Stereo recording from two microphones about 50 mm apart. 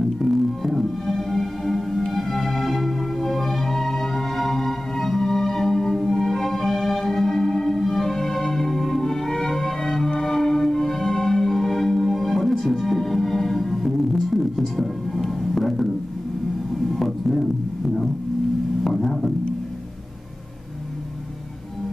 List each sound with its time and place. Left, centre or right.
0.2 s music: centre
16.9 s music: centre
18.9 s a sound: centre